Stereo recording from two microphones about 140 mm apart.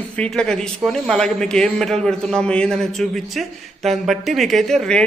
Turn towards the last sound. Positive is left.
turn(degrees=5)  # may be behind; listen again after turning